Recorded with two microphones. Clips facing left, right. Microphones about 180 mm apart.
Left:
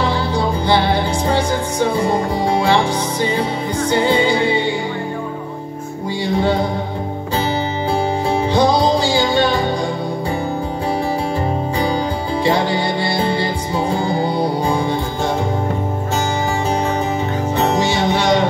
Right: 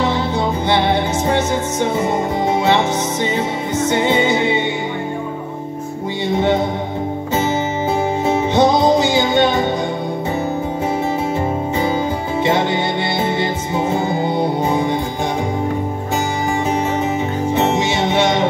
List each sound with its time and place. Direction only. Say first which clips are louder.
0.0 s music: right 1 dB; 20° right (ahead or behind)
6.2 s music: right 1 dB; 20° right (ahead or behind)
8.3 s music: right 1 dB; 20° right (ahead or behind)
12.4 s music: even; 20° right (ahead or behind)
17.6 s music: left 1 dB; 25° right (ahead or behind)